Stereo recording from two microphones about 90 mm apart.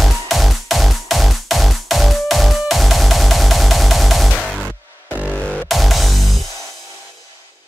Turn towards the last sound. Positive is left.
turn(degrees=0)  # may be behind; listen again after turning